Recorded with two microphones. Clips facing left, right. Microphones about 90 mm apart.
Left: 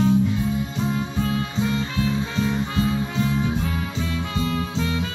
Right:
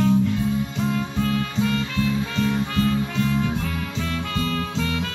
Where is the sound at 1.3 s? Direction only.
20° left (ahead or behind).